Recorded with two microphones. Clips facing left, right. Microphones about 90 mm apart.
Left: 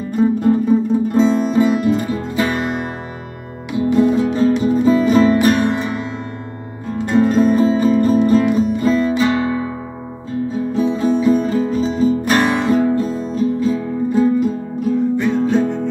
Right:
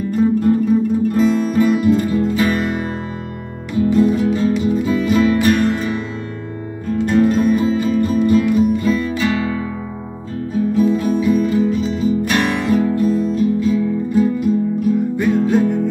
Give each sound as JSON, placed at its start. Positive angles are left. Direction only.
{"t": 0.2, "sound": "music", "side_deg": 20}
{"t": 3.7, "sound": "music", "side_deg": 20}
{"t": 7.1, "sound": "music", "side_deg": 25}
{"t": 10.7, "sound": "music", "side_deg": 25}
{"t": 15.0, "sound": "music", "side_deg": -10}